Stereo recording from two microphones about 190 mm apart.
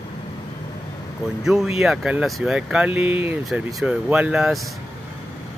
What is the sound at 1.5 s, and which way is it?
Speech, centre (ahead or behind).